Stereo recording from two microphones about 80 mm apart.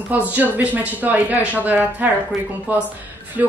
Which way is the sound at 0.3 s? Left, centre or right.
Right.